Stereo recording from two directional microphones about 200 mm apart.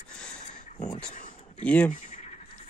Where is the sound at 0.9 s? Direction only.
35° left (ahead or behind).